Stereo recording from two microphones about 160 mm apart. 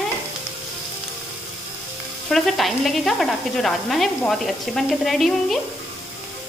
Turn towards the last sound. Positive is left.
turn(degrees=0)  # may be behind; listen again after turning